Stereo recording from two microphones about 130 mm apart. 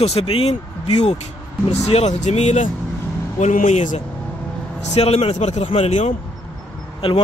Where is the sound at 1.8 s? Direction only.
55° left (ahead or behind).